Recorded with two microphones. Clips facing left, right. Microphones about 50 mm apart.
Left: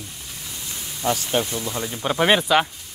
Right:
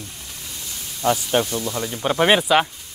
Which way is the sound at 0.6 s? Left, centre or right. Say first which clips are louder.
Left 1 dB; centre.